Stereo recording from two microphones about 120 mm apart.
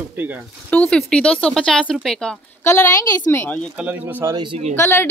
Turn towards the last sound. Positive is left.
turn(degrees=20)  # may be behind; listen again after turning